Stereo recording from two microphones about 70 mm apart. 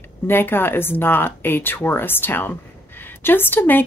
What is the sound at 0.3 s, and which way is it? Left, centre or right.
Speech, left.